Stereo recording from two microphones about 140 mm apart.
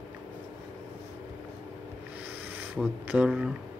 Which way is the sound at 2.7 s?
10° right (ahead or behind).